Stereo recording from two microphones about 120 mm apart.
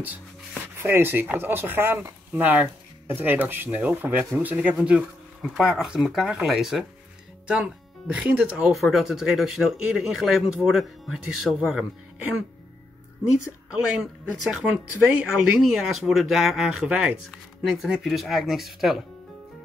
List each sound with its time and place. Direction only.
0.8 s speech: 15° right (ahead or behind)
13.7 s speech: 5° right (ahead or behind)
15.6 s speech: centre (ahead or behind)